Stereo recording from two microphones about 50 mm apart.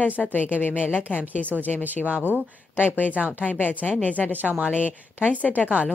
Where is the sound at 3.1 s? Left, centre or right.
Right.